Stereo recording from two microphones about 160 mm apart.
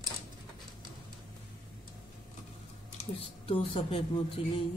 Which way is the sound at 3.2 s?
35° left (ahead or behind).